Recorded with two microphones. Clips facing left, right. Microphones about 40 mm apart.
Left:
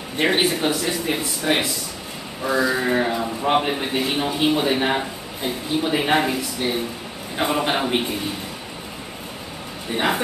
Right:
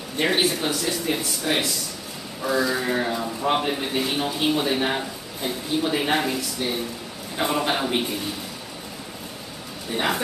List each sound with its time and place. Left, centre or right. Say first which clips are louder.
0.2 s a man's voice: left 3 dB; centre
9.8 s speech: left 3 dB; centre